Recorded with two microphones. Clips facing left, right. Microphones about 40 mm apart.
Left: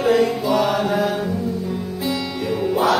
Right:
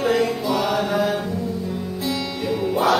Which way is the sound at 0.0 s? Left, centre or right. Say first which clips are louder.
Left 3 dB; centre.